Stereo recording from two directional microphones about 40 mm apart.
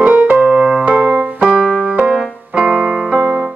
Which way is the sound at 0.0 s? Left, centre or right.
Right.